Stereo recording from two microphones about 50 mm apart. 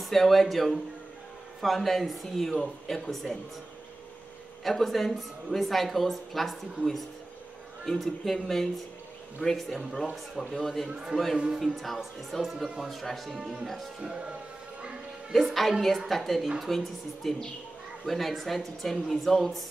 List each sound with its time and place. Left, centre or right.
0.0 s a woman's voice: centre
4.6 s a woman's voice: centre
11.0 s a man's voice: centre
11.3 s a man's voice: centre
11.6 s a woman's voice: centre
15.3 s a woman's voice: centre
16.7 s a woman's voice: centre